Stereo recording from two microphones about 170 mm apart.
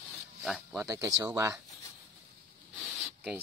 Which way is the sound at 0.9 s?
20° right (ahead or behind).